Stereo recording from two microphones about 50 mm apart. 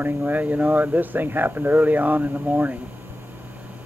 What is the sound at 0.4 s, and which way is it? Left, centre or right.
Speech, right.